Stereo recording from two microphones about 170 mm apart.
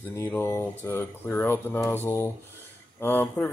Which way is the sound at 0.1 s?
15° left (ahead or behind).